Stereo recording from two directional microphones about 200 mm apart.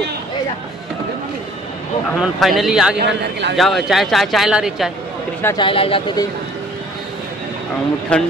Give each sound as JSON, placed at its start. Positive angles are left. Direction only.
{"t": 2.0, "sound": "speech", "side_deg": 0}
{"t": 3.0, "sound": "a man's voice", "side_deg": -60}
{"t": 3.5, "sound": "speech", "side_deg": 0}
{"t": 5.6, "sound": "speech", "side_deg": 25}
{"t": 8.1, "sound": "speech", "side_deg": 5}